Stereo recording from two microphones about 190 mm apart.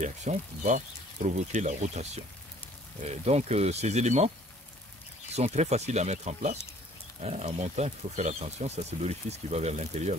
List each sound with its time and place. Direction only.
0.0 s speech: 40° right (ahead or behind)
5.3 s speech: 35° right (ahead or behind)